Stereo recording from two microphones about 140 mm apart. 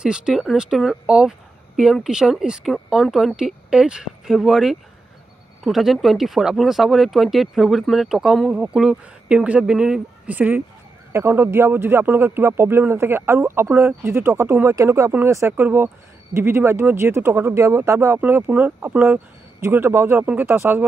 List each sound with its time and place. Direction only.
0.0 s speech: 5° right (ahead or behind)